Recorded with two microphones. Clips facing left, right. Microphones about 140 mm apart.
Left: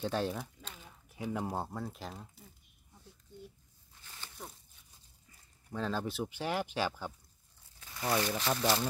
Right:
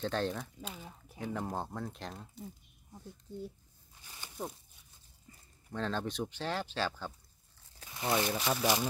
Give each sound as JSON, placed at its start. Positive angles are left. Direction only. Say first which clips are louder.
{"t": 0.0, "sound": "speech", "louder": "even", "side_deg": 10}
{"t": 0.8, "sound": "a sound", "louder": "right 4 dB", "side_deg": -30}
{"t": 1.2, "sound": "speech", "louder": "left 1 dB", "side_deg": 10}
{"t": 4.0, "sound": "a sound", "louder": "even", "side_deg": -15}
{"t": 5.7, "sound": "speech", "louder": "even", "side_deg": 5}
{"t": 7.9, "sound": "speech", "louder": "even", "side_deg": -20}